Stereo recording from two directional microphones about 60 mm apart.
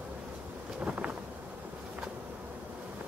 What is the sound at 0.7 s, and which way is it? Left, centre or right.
Vehicle, centre.